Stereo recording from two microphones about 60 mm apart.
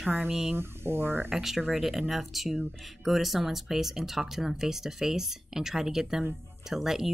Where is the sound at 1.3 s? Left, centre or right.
Centre.